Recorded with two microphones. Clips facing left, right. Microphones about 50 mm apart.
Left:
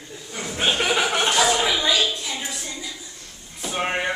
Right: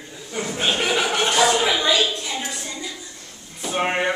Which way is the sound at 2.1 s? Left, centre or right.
Centre.